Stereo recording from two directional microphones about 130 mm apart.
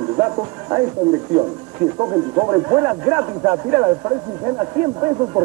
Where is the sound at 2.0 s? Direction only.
25° right (ahead or behind).